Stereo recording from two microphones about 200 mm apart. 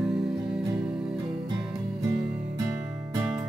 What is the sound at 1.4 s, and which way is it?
Music, 20° right (ahead or behind).